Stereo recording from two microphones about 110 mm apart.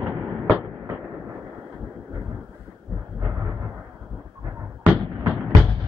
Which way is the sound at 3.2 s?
25° right (ahead or behind).